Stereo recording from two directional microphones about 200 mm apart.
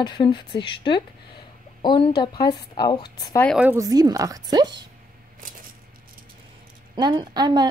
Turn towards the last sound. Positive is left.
turn(degrees=-20)  # may be behind; listen again after turning